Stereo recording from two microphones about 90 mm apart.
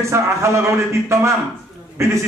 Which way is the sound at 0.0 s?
30° right (ahead or behind).